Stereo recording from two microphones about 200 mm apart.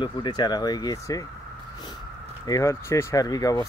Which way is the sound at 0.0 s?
20° left (ahead or behind).